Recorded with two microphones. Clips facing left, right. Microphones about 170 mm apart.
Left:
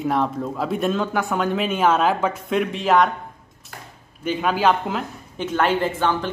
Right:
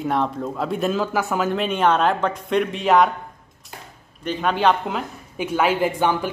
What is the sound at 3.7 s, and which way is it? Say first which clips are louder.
Chop: even; 20° right (ahead or behind).